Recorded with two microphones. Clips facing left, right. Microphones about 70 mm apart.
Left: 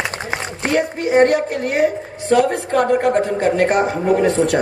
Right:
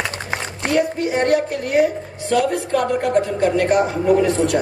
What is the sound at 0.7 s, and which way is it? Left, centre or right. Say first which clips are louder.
Speech: left 2 dB; left.